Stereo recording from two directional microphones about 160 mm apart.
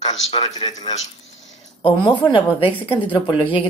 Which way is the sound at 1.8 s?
35° left (ahead or behind).